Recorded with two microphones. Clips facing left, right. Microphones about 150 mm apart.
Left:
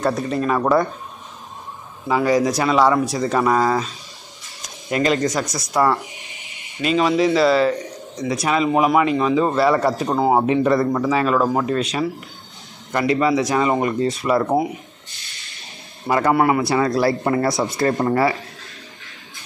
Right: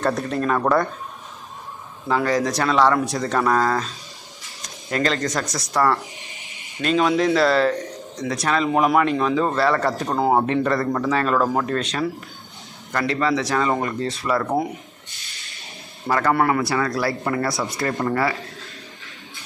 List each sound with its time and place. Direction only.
0.0 s a man's voice: 5° left (ahead or behind)
2.0 s a man's voice: 10° left (ahead or behind)
16.1 s speech: 15° left (ahead or behind)